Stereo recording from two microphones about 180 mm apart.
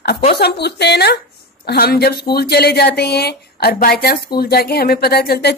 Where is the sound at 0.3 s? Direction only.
65° left (ahead or behind).